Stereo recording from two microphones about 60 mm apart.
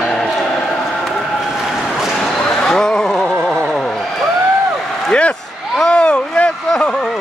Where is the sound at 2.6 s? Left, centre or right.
Centre.